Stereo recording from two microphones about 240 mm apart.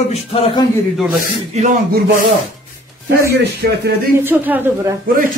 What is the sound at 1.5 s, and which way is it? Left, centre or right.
Speech, right.